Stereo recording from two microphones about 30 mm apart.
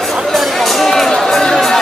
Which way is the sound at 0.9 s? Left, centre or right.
Centre.